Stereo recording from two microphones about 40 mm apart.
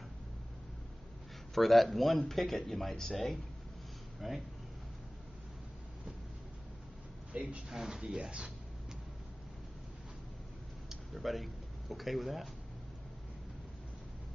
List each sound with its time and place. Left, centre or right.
1.5 s a man's voice: centre
7.3 s speech: right
7.7 s speech: centre
10.9 s speech: centre